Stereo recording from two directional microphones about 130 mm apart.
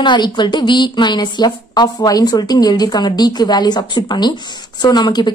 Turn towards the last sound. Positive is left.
turn(degrees=35)  # may be behind; listen again after turning